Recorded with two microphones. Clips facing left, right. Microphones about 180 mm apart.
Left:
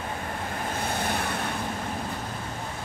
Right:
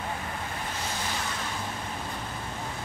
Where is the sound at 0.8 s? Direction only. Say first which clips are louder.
Left 6 dB; 60° left (ahead or behind).